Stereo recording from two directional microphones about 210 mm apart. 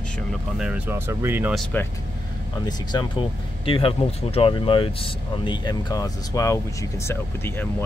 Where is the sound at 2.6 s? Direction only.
20° left (ahead or behind).